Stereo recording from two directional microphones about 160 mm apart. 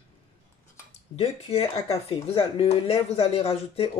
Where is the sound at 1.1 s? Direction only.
40° left (ahead or behind).